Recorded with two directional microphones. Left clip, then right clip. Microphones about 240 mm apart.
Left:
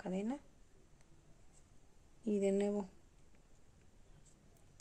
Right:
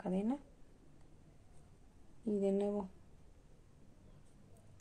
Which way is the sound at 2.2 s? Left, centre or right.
Centre.